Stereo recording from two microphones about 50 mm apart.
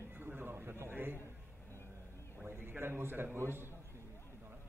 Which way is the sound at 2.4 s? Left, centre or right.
Right.